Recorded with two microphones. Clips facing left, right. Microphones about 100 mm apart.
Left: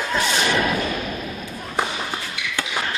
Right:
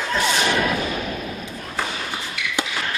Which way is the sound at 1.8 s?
20° left (ahead or behind).